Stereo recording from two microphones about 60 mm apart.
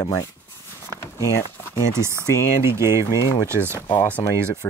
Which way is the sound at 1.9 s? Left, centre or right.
Right.